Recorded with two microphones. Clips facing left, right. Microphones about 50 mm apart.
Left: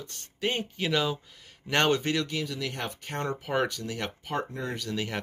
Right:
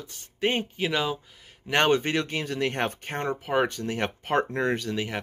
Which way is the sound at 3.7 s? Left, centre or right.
Right.